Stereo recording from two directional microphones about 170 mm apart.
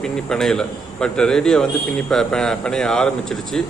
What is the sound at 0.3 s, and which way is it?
Speech, 5° left (ahead or behind).